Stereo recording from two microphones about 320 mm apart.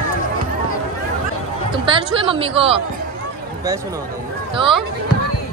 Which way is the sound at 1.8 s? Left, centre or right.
Centre.